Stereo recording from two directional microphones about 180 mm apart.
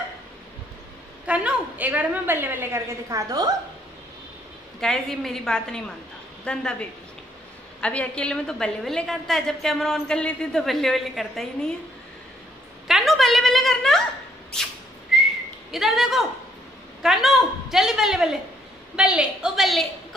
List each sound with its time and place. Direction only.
1.2 s a woman's voice: 10° right (ahead or behind)
4.7 s a woman's voice: centre (ahead or behind)
12.8 s a woman's voice: centre (ahead or behind)
15.1 s whistling: centre (ahead or behind)
15.7 s a woman's voice: centre (ahead or behind)